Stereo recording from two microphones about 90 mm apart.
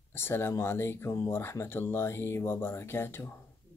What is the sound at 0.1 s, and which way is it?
Speech, 25° left (ahead or behind).